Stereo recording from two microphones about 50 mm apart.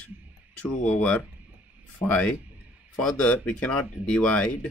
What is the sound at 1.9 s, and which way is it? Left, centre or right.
Speech, left.